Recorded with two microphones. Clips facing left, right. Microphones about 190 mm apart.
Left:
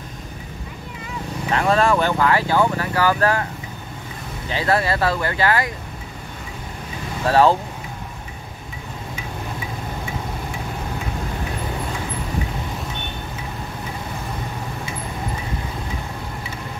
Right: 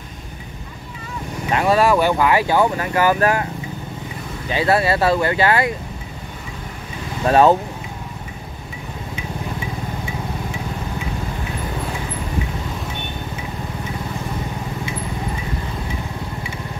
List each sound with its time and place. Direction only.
1.5 s speech: 15° right (ahead or behind)
4.5 s speech: 15° right (ahead or behind)
7.2 s speech: 20° right (ahead or behind)